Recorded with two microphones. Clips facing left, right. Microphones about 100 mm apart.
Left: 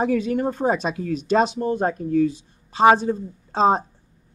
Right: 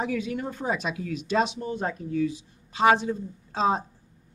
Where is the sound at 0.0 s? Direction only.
45° left (ahead or behind).